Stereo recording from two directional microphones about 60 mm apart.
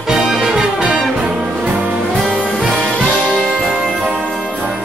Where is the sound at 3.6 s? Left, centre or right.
Right.